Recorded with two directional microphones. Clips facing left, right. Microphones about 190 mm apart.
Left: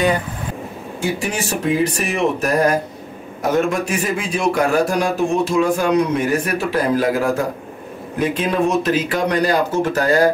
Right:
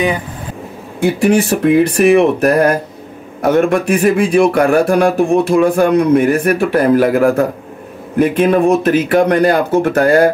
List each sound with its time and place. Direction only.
1.0 s speech: 60° right (ahead or behind)